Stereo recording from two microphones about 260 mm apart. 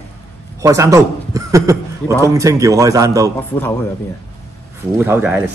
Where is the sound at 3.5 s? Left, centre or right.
Centre.